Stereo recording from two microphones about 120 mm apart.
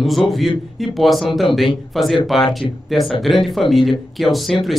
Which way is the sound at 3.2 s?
Centre (ahead or behind).